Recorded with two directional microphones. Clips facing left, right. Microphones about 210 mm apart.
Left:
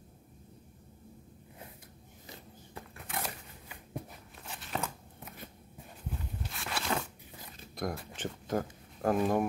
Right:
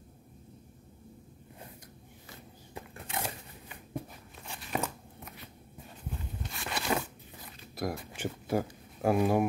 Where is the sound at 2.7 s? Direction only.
25° right (ahead or behind).